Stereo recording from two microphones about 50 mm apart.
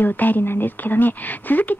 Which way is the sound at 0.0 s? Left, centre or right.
Left.